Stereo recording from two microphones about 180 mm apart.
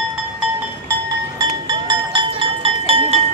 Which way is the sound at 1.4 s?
25° right (ahead or behind).